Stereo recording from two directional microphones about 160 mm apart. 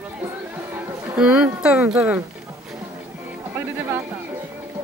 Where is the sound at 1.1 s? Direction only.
5° right (ahead or behind).